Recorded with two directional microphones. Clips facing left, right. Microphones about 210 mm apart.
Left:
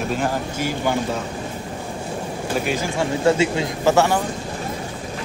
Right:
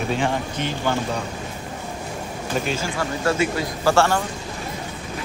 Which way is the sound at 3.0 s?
25° left (ahead or behind).